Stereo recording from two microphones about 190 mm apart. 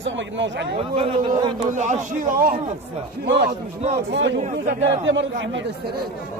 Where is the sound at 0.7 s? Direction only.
30° right (ahead or behind).